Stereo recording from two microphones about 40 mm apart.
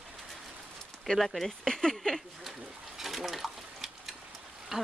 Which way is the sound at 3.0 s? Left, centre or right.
Centre.